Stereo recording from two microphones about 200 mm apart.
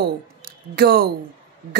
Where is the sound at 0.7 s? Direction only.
50° right (ahead or behind).